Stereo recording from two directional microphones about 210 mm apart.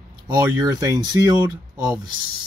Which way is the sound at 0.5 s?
20° right (ahead or behind).